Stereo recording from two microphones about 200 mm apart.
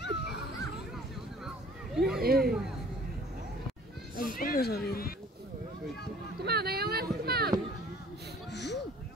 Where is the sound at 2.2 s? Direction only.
50° right (ahead or behind).